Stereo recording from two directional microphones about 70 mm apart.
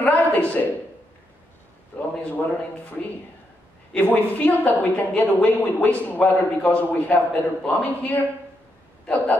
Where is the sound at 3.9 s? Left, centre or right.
Left.